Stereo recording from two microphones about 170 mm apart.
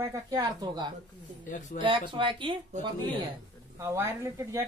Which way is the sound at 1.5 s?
45° left (ahead or behind).